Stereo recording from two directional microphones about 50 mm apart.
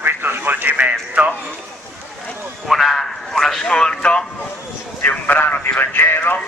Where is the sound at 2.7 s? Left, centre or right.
Centre.